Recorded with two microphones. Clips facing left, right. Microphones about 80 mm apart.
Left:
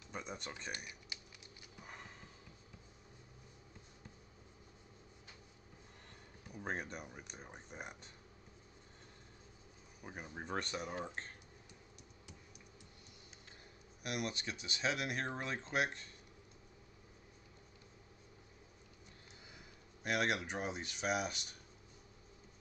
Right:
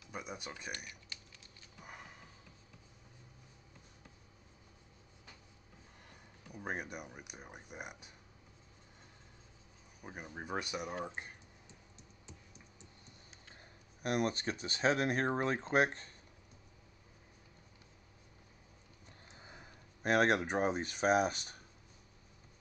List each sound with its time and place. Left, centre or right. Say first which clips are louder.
0.1 s speech: right 1 dB; centre
0.7 s speech: right 1 dB; centre
1.8 s a sound: right 1 dB; centre
6.5 s speech: right 1 dB; centre
10.0 s speech: right 1 dB; centre
14.0 s speech: right 7 dB; right
19.4 s speech: right 5 dB; right